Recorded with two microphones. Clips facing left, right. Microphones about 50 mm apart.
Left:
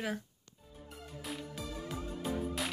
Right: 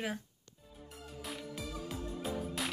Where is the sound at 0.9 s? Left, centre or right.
Centre.